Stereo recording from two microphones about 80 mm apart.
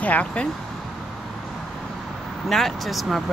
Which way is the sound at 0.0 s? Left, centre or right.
Centre.